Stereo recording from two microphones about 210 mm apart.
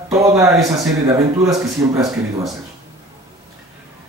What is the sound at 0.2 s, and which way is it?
Speech, 15° right (ahead or behind).